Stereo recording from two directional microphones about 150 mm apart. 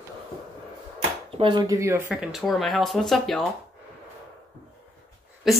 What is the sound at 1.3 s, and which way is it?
Speech, 35° right (ahead or behind).